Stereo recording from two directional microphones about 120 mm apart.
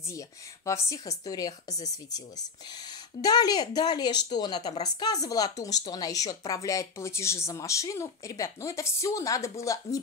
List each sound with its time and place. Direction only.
0.8 s a woman's voice: 30° left (ahead or behind)